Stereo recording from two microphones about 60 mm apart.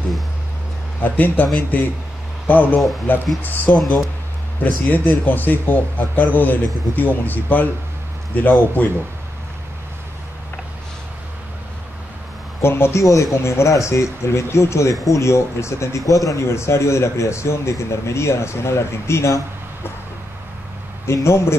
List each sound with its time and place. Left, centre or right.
1.0 s speech: left
3.7 s speech: centre
4.8 s a man's voice: left
12.6 s a man's voice: left
13.0 s a man's voice: left
16.1 s a man's voice: left
21.1 s a man's voice: left